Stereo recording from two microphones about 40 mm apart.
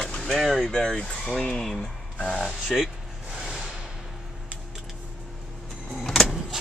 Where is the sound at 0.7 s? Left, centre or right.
Centre.